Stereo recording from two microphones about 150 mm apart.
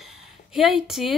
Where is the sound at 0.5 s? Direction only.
Centre (ahead or behind).